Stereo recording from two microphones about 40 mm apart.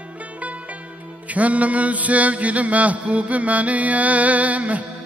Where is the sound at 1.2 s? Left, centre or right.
Right.